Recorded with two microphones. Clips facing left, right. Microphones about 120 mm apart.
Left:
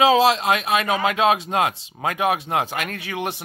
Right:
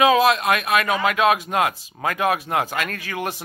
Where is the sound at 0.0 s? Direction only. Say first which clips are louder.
Even; 25° left (ahead or behind).